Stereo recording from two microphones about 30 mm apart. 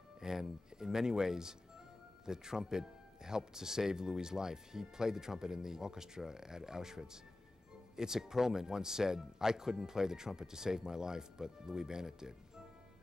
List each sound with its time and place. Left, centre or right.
0.2 s speech: centre